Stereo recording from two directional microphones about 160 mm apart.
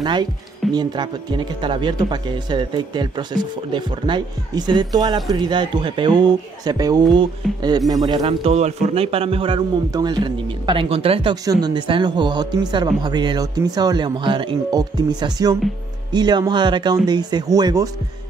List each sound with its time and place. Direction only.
0.0 s speech: 30° right (ahead or behind)
8.2 s a man's voice: 40° right (ahead or behind); by 17.8 s 25° right (ahead or behind)